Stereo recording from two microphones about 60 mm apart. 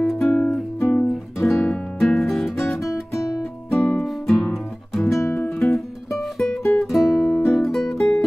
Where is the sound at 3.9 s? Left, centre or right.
Centre.